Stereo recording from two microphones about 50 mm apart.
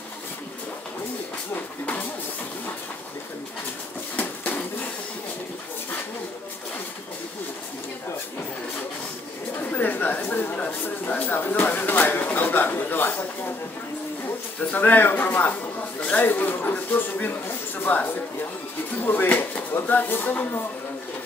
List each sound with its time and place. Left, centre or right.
4.2 s a sound: left
9.7 s speech: left
14.8 s speech: left